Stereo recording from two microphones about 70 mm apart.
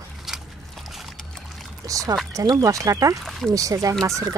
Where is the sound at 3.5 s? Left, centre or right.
Right.